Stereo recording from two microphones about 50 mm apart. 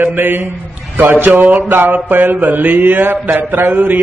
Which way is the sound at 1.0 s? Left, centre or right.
Right.